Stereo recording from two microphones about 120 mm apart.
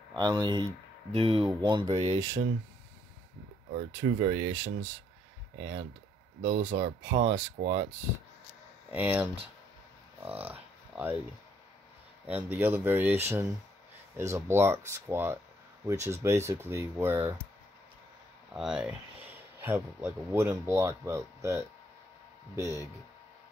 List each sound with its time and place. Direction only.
0.1 s speech: 35° right (ahead or behind)
0.7 s speech: 50° right (ahead or behind)
2.1 s speech: 30° right (ahead or behind)
3.7 s speech: 70° right (ahead or behind)
6.4 s speech: 80° right
8.9 s speech: 15° right (ahead or behind)
12.3 s speech: 15° right (ahead or behind)
18.5 s speech: 5° right (ahead or behind)
19.6 s speech: 20° right (ahead or behind)